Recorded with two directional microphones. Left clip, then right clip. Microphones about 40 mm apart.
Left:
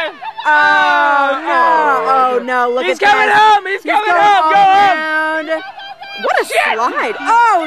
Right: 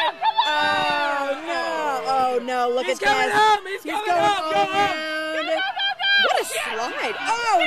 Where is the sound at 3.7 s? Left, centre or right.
Left.